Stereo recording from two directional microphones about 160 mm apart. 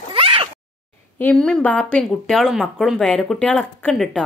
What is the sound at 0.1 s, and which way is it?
Cat, 35° right (ahead or behind).